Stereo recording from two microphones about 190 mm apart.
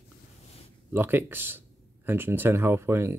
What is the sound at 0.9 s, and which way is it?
Speech, 10° right (ahead or behind).